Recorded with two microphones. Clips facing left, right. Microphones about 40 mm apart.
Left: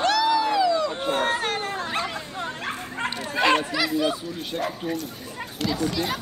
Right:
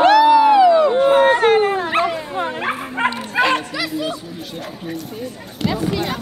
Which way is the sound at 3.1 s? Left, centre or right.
Centre.